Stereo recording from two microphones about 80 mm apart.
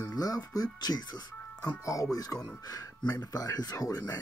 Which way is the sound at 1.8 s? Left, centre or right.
Left.